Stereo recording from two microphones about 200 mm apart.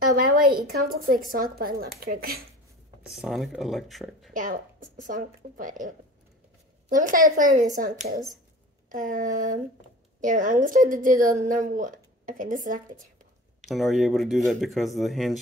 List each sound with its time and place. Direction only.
0.0 s a woman's voice: 45° right (ahead or behind)
3.1 s speech: centre (ahead or behind)
4.3 s a woman's voice: 40° right (ahead or behind)
8.9 s a woman's voice: 40° right (ahead or behind)
13.7 s speech: centre (ahead or behind)